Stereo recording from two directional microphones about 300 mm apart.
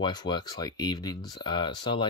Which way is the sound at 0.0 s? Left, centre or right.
Centre.